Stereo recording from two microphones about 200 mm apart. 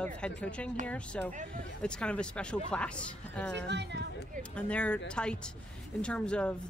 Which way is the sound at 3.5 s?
60° right (ahead or behind).